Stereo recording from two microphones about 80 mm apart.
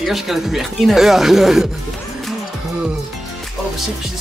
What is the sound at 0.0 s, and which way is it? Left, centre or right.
Speech, centre.